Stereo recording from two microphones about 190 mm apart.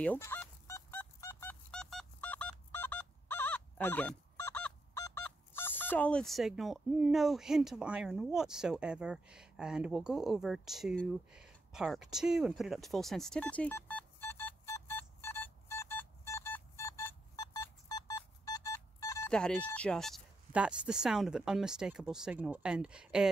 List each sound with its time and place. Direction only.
0.0 s fowl: 10° left (ahead or behind)
19.3 s speech: 5° left (ahead or behind)